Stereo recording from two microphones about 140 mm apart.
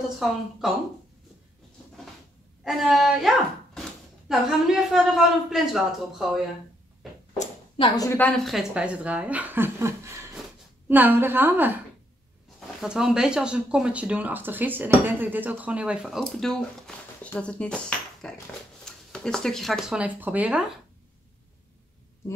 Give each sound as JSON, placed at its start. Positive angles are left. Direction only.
{"t": 0.6, "sound": "speech", "side_deg": -5}
{"t": 2.6, "sound": "speech", "side_deg": 0}
{"t": 7.3, "sound": "a sound", "side_deg": 45}
{"t": 8.2, "sound": "speech", "side_deg": 5}